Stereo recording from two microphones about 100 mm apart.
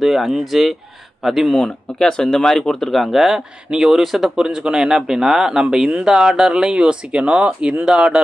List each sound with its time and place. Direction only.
0.0 s speech: centre (ahead or behind)